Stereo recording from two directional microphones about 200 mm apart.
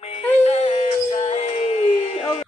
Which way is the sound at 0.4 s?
35° left (ahead or behind).